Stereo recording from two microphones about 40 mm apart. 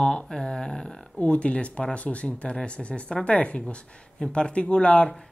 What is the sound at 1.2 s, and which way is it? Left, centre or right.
Speech, left.